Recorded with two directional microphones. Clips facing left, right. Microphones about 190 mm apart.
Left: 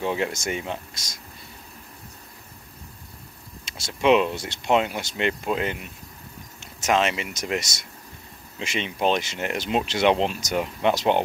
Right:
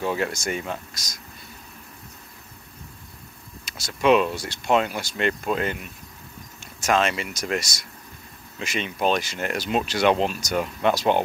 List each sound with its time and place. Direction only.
0.0 s speech: 20° left (ahead or behind)
3.6 s speech: 25° left (ahead or behind)